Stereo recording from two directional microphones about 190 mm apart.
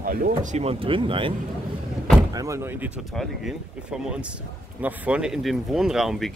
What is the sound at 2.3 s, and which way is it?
Speech, 15° right (ahead or behind).